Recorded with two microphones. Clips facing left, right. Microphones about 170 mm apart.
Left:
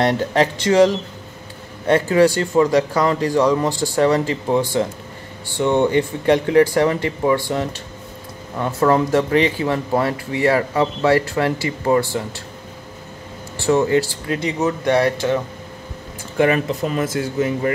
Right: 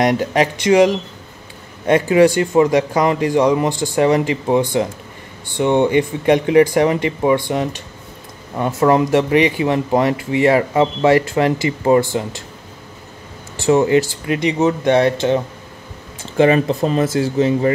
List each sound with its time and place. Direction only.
0.0 s a man's voice: 15° right (ahead or behind)
13.7 s speech: 20° right (ahead or behind)